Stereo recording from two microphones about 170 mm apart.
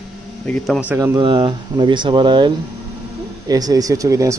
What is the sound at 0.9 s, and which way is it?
Speech, 15° right (ahead or behind).